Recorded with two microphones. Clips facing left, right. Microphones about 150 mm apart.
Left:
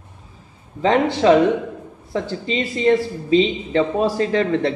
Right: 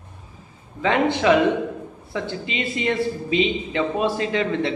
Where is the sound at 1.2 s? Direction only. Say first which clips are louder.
Left 4 dB; 30° left (ahead or behind).